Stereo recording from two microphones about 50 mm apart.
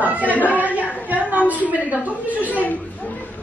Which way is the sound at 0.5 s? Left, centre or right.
Right.